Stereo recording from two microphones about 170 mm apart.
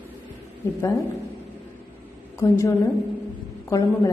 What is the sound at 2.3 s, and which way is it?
A woman's voice, 15° left (ahead or behind).